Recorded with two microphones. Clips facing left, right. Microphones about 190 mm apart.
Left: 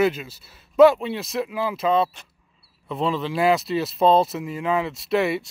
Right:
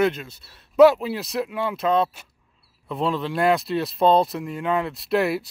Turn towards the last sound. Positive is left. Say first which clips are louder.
# even
turn(degrees=0)  # may be behind; listen again after turning